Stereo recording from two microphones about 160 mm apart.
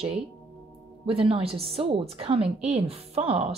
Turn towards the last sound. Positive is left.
turn(degrees=-40)  # may be behind; listen again after turning